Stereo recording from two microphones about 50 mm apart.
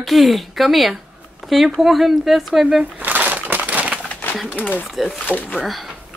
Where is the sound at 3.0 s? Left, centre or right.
Right.